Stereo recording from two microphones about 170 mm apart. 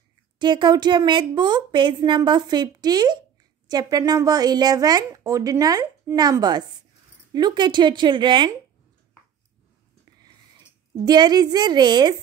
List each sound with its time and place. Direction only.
0.4 s speech: 25° right (ahead or behind)
11.1 s speech: 25° right (ahead or behind)